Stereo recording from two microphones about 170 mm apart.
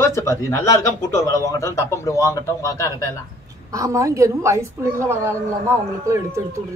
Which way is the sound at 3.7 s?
20° right (ahead or behind).